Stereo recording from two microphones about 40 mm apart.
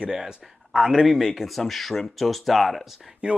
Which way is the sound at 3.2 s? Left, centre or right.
Right.